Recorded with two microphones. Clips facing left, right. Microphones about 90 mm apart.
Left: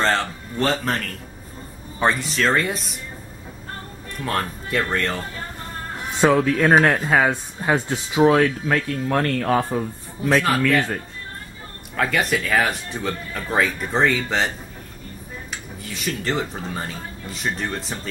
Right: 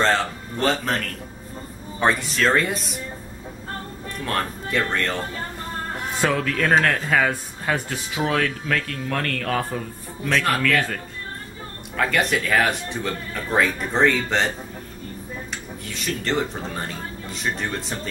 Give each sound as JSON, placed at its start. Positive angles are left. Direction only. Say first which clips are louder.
{"t": 0.0, "sound": "speech", "louder": "right 1 dB", "side_deg": 0}
{"t": 4.2, "sound": "speech", "louder": "left 1 dB", "side_deg": 5}
{"t": 6.1, "sound": "speech", "louder": "left 6 dB", "side_deg": 20}
{"t": 12.0, "sound": "speech", "louder": "even", "side_deg": 0}
{"t": 15.5, "sound": "speech", "louder": "even", "side_deg": 0}